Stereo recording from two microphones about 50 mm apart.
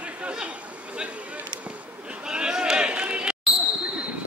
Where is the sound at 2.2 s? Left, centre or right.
Centre.